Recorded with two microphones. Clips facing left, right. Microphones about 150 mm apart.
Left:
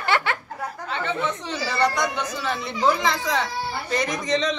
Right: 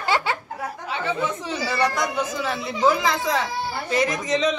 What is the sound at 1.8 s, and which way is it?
A woman's voice, 5° right (ahead or behind).